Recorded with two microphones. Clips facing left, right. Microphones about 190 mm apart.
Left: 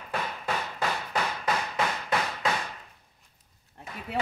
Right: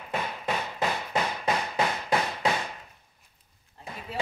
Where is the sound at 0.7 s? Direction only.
20° right (ahead or behind).